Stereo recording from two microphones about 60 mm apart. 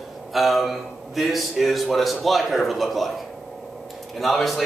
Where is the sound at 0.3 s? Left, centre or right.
Centre.